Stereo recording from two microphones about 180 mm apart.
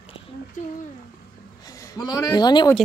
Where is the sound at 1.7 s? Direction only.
20° left (ahead or behind).